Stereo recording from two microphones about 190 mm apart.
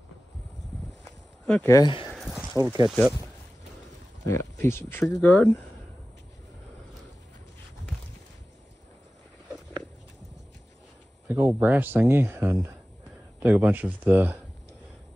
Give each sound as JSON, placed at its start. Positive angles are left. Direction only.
{"t": 1.5, "sound": "speech", "side_deg": 15}
{"t": 2.0, "sound": "a sound", "side_deg": -5}
{"t": 2.5, "sound": "speech", "side_deg": -20}
{"t": 2.9, "sound": "speech", "side_deg": 0}
{"t": 4.3, "sound": "speech", "side_deg": 15}
{"t": 11.2, "sound": "speech", "side_deg": -10}